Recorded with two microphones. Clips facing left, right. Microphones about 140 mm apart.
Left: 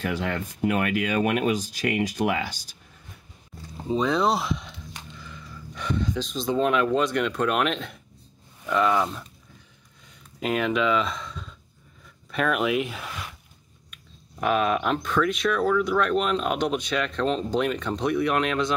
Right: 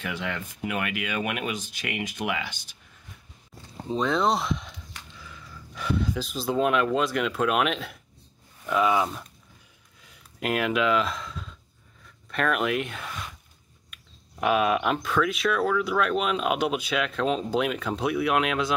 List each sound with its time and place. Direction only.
0.0 s speech: 40° left (ahead or behind)
3.9 s speech: centre (ahead or behind)
13.9 s a sound: centre (ahead or behind)
14.4 s speech: 5° right (ahead or behind)